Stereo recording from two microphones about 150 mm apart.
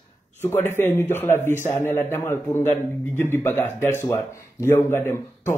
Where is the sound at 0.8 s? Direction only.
15° left (ahead or behind).